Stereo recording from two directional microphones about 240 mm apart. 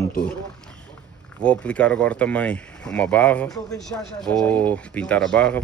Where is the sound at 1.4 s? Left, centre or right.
Centre.